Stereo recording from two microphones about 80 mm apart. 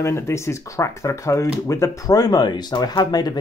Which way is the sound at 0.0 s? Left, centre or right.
Left.